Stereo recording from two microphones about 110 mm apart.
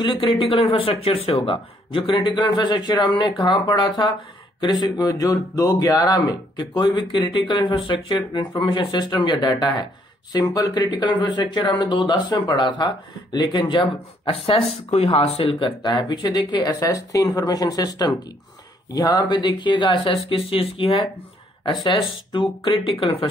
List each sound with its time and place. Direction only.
0.0 s a man's voice: 50° left (ahead or behind)
14.2 s speech: 60° left (ahead or behind)
15.8 s a man's voice: 45° left (ahead or behind)